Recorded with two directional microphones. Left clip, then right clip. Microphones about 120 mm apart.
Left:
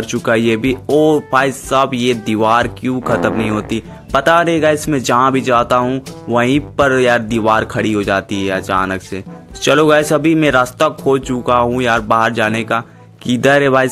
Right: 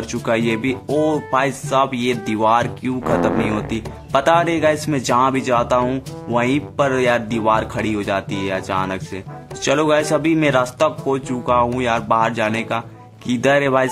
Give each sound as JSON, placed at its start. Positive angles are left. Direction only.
{"t": 0.0, "sound": "speech", "side_deg": 30}